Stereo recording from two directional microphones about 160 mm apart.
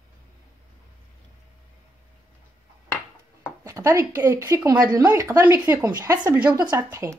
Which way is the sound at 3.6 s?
20° right (ahead or behind).